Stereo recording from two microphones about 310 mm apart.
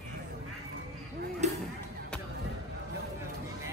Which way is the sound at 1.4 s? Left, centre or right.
Right.